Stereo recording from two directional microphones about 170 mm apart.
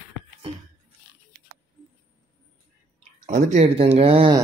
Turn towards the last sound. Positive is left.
turn(degrees=-30)  # may be behind; listen again after turning